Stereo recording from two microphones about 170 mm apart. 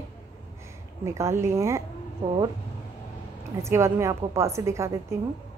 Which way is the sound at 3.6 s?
15° right (ahead or behind).